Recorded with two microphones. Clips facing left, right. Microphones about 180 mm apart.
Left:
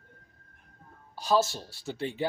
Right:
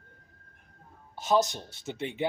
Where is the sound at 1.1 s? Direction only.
20° right (ahead or behind).